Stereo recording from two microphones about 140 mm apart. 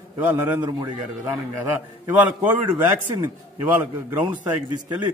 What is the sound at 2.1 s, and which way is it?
Speech, 15° right (ahead or behind).